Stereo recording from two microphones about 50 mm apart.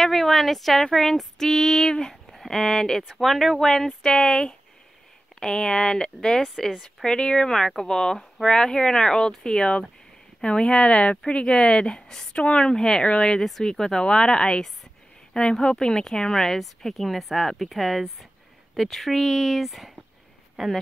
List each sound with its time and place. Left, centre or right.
0.0 s speech: centre
6.4 s speech: centre
8.2 s speech: centre
8.5 s speech: centre